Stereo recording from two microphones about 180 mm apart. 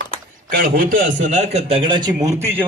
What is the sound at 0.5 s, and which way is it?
A man's voice, 50° right (ahead or behind).